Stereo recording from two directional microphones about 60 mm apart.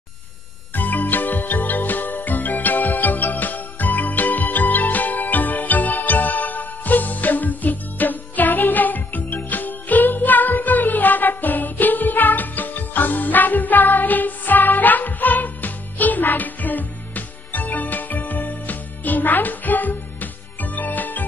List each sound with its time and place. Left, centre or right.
0.7 s music: left